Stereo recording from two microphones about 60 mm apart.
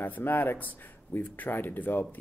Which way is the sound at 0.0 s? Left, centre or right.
Left.